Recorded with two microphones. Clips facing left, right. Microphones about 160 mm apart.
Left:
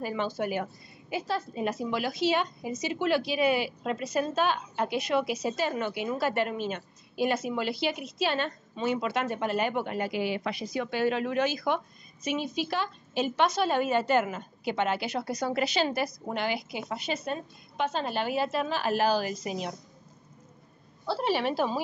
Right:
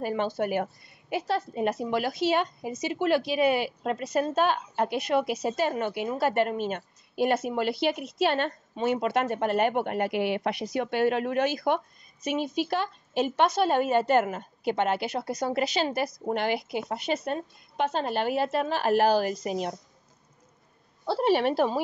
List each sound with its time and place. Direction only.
0.0 s a woman's voice: 55° right (ahead or behind)
15.1 s speech: 25° right (ahead or behind)
15.4 s a woman's voice: 45° right (ahead or behind)
21.1 s a woman's voice: 55° right (ahead or behind)